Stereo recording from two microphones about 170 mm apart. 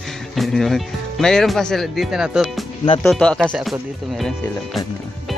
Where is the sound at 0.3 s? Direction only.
Centre (ahead or behind).